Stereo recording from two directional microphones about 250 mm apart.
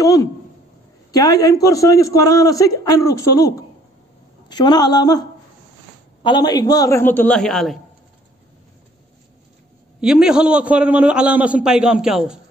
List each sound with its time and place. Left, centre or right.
0.0 s a man's voice: centre
6.2 s a man's voice: centre
9.9 s a man's voice: centre